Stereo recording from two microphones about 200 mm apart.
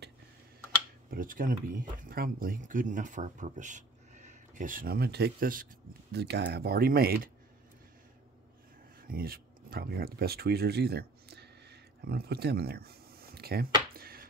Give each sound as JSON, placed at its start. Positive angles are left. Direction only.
{"t": 1.1, "sound": "speech", "side_deg": -45}
{"t": 6.1, "sound": "speech", "side_deg": -55}
{"t": 9.0, "sound": "speech", "side_deg": -45}
{"t": 13.9, "sound": "music", "side_deg": -50}